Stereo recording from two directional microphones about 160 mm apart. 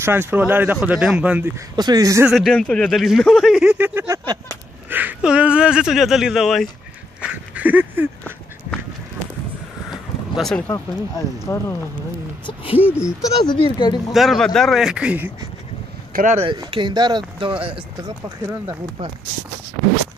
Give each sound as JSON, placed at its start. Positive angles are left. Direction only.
{"t": 0.0, "sound": "speech", "side_deg": -15}
{"t": 1.8, "sound": "speech", "side_deg": -25}
{"t": 2.2, "sound": "speech", "side_deg": 0}
{"t": 7.2, "sound": "a sound", "side_deg": -5}
{"t": 9.8, "sound": "a sound", "side_deg": 0}
{"t": 10.7, "sound": "speech", "side_deg": 20}
{"t": 12.9, "sound": "speech", "side_deg": 20}
{"t": 14.1, "sound": "speech", "side_deg": 0}
{"t": 16.1, "sound": "speech", "side_deg": -55}
{"t": 16.3, "sound": "speech", "side_deg": -30}